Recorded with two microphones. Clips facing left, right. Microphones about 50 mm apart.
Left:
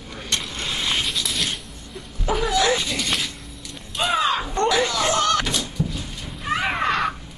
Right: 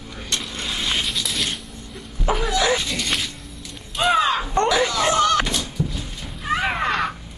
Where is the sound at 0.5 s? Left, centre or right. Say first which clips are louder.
Right 1 dB; centre.